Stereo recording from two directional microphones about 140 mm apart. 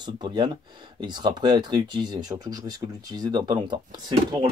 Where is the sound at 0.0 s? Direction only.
35° right (ahead or behind).